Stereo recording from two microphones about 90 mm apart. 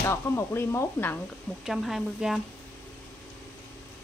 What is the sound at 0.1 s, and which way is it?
Chopping, 30° left (ahead or behind).